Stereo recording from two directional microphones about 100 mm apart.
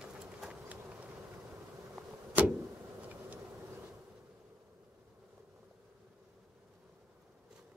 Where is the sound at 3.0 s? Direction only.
15° right (ahead or behind).